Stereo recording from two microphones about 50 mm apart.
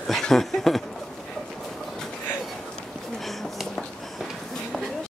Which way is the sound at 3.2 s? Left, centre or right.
Centre.